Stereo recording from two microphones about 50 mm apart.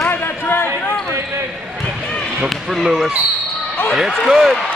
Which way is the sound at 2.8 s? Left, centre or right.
Centre.